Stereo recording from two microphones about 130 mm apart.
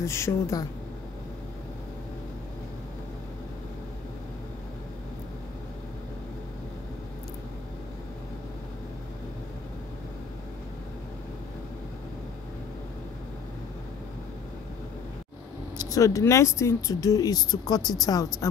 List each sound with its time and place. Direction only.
0.0 s speech: 20° left (ahead or behind)
15.9 s speech: 25° left (ahead or behind)